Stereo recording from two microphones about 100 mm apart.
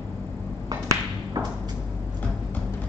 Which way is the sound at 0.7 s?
40° right (ahead or behind).